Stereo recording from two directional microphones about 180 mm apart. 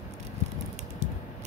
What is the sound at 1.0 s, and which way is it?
Typing, 35° right (ahead or behind).